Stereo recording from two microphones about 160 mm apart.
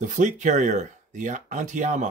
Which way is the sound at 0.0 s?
50° right (ahead or behind).